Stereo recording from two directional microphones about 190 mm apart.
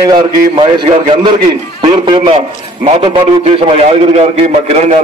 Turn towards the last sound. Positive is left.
turn(degrees=-35)  # may be behind; listen again after turning